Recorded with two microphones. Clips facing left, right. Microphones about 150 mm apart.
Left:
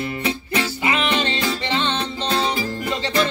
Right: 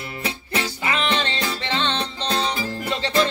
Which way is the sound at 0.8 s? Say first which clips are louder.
Left 1 dB; 10° left (ahead or behind).